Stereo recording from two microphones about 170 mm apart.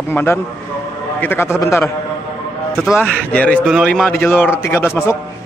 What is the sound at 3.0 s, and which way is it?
A man's voice, 10° left (ahead or behind).